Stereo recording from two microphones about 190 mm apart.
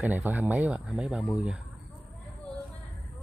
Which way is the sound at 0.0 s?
10° right (ahead or behind).